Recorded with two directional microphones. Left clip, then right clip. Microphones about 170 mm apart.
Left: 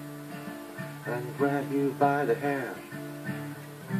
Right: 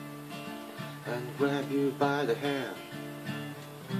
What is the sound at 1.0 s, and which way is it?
Music, 20° right (ahead or behind).